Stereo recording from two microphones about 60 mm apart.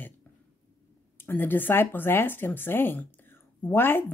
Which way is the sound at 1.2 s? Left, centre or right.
Left.